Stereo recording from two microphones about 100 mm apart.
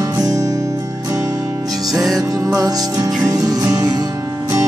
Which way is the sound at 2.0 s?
Centre (ahead or behind).